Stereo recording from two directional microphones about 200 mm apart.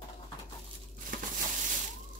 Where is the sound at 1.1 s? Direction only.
40° right (ahead or behind).